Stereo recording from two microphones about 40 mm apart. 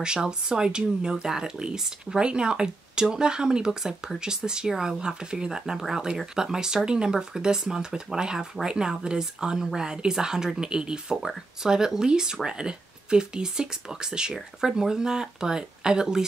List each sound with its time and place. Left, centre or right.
0.0 s speech: centre